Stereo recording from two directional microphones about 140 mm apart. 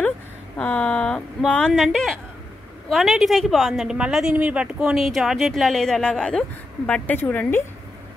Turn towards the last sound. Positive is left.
turn(degrees=15)  # may be behind; listen again after turning